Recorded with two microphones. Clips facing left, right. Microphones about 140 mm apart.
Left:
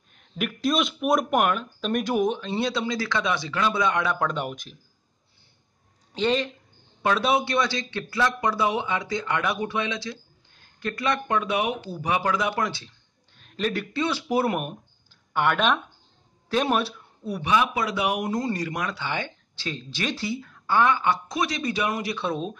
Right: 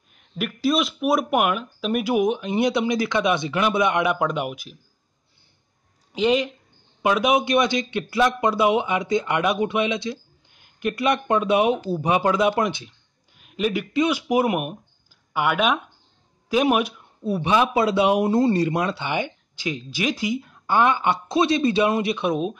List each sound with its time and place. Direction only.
0.1 s speech: centre (ahead or behind)
6.1 s speech: 10° right (ahead or behind)
17.2 s speech: 25° right (ahead or behind)